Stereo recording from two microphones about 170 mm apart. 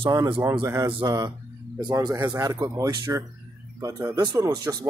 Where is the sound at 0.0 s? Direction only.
25° right (ahead or behind).